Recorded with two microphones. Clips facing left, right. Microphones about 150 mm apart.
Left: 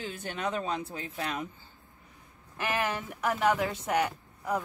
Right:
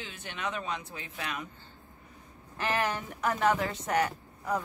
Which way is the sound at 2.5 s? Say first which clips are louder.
Right 1 dB; 10° left (ahead or behind).